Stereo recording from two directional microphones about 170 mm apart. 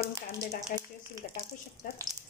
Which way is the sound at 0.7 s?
50° left (ahead or behind).